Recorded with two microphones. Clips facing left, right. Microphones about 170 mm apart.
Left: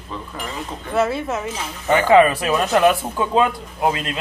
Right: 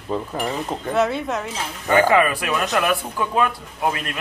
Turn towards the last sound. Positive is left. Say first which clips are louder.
# left 3 dB
turn(degrees=20)  # may be behind; listen again after turning